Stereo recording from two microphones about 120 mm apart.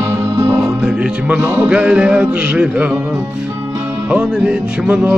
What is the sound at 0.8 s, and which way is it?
Music, 10° right (ahead or behind).